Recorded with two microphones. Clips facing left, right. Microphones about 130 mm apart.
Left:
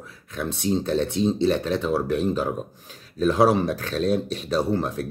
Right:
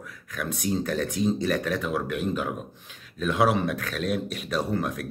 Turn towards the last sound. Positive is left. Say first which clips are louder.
# left 4 dB
turn(degrees=30)  # may be behind; listen again after turning